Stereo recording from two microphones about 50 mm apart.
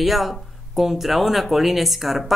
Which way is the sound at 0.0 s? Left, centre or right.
Centre.